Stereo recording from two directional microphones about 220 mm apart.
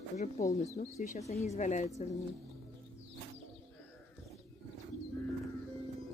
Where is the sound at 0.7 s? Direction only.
30° left (ahead or behind).